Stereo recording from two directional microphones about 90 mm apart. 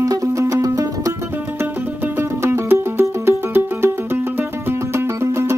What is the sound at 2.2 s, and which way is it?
Music, 30° right (ahead or behind).